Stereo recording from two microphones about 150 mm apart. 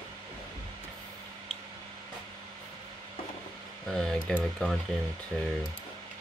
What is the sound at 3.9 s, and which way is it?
Speech, 5° left (ahead or behind).